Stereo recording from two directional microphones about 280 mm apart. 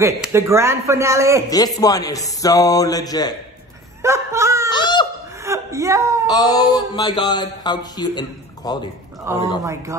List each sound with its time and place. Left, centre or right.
0.0 s a man's voice: centre
1.5 s speech: centre
4.0 s chuckle: centre
4.6 s laughter: centre
5.4 s whimper: centre
6.3 s speech: centre
9.3 s a man's voice: centre